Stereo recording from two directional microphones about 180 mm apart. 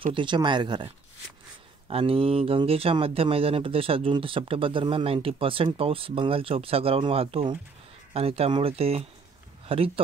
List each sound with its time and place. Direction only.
0.1 s speech: 25° right (ahead or behind)